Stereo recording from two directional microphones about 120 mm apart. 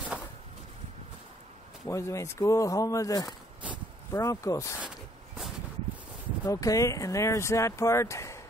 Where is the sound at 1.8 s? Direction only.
25° left (ahead or behind).